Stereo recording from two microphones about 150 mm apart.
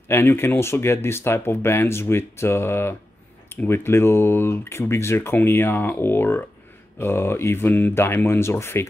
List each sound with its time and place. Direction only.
0.1 s speech: 15° left (ahead or behind)